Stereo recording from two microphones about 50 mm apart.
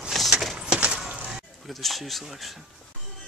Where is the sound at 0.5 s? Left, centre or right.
Centre.